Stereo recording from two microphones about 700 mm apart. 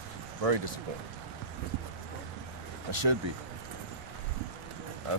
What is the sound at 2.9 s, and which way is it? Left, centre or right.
Speech, right.